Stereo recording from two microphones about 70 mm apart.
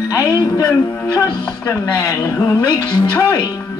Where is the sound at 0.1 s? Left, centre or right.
Left.